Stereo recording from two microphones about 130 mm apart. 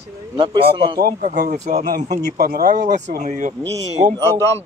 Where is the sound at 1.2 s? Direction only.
75° right (ahead or behind).